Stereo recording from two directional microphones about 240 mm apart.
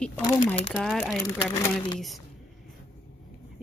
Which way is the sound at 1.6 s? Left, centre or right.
Centre.